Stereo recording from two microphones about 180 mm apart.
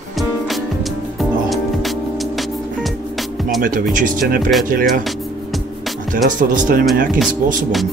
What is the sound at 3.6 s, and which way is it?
Speech, 50° right (ahead or behind).